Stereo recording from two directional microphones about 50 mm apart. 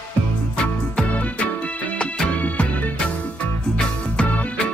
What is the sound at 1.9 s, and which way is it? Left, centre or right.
Music, left.